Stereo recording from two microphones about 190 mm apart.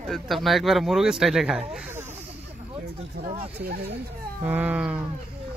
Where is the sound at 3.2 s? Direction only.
30° right (ahead or behind).